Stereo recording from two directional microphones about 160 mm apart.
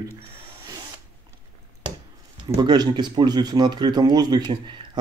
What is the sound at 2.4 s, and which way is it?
Speech, 25° right (ahead or behind).